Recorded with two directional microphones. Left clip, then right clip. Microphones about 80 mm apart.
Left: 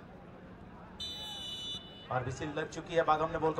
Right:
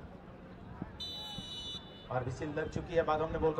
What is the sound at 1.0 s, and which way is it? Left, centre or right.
Vehicle, centre.